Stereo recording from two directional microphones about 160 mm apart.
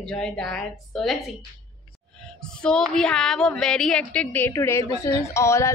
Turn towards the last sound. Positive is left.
turn(degrees=15)  # may be behind; listen again after turning